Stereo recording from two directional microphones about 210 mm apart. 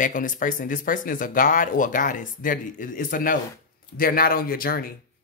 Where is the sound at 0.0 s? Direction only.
40° left (ahead or behind).